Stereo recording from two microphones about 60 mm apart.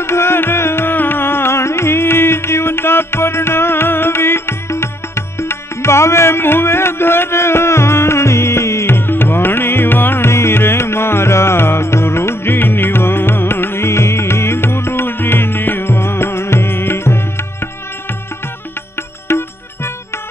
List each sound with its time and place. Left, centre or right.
0.0 s music: left
19.2 s music: left